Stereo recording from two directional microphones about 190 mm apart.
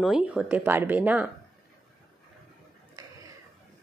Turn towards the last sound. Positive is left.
turn(degrees=-20)  # may be behind; listen again after turning